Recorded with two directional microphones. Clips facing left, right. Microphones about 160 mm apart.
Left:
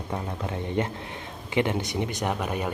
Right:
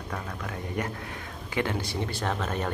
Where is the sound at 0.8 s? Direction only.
25° left (ahead or behind).